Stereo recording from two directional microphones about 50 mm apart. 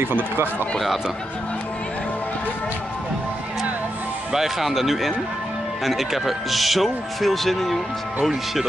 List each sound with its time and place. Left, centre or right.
0.0 s speech: right
4.3 s speech: centre